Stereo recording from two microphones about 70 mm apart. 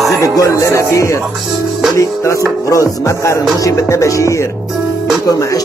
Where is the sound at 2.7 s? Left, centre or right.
Left.